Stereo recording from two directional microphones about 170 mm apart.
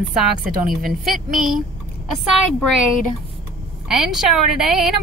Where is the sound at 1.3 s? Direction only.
Centre (ahead or behind).